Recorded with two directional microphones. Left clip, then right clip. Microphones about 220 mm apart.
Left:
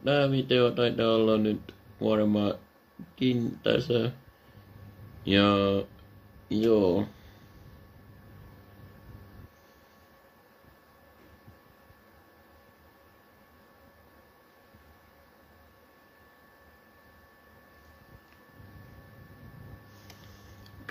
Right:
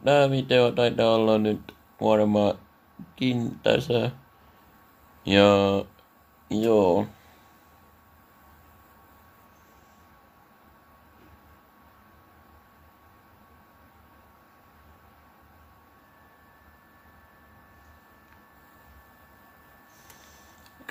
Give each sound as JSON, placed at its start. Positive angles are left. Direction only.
{"t": 0.0, "sound": "speech", "side_deg": -15}
{"t": 5.2, "sound": "speech", "side_deg": -15}